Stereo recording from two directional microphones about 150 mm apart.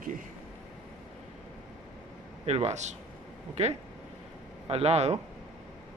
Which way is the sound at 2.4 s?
45° right (ahead or behind).